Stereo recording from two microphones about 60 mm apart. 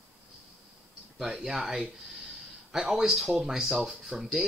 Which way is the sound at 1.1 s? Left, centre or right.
Centre.